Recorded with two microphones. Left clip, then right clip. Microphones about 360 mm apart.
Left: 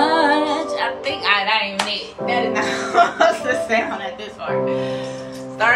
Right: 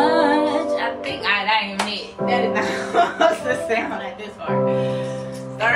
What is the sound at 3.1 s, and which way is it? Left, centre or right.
Speech, centre.